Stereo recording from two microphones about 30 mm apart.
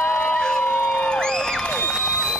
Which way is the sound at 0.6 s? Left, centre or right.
Left.